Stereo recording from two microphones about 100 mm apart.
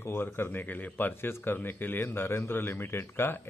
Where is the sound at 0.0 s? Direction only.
25° left (ahead or behind).